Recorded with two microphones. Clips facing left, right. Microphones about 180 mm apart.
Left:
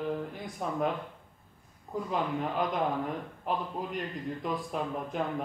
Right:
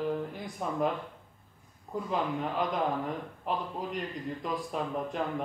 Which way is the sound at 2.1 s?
Centre (ahead or behind).